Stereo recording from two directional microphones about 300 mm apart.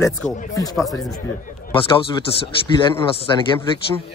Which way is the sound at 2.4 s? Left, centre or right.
Centre.